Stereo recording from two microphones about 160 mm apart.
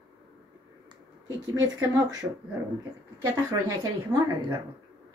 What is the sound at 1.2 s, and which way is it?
A woman's voice, 20° right (ahead or behind).